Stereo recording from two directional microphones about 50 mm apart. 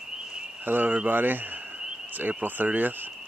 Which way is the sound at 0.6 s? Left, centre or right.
Right.